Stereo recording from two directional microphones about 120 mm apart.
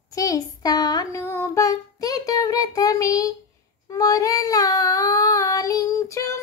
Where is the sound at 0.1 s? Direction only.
30° left (ahead or behind).